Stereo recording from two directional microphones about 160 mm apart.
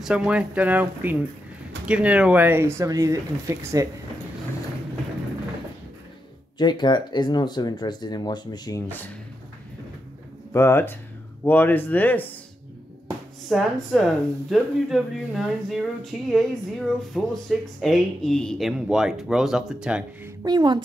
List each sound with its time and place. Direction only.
0.0 s speech: 5° right (ahead or behind)
6.6 s speech: 25° left (ahead or behind)
8.8 s speech: 10° left (ahead or behind)
10.5 s speech: 15° left (ahead or behind)
13.5 s speech: centre (ahead or behind)
20.4 s a woman's voice: 25° right (ahead or behind)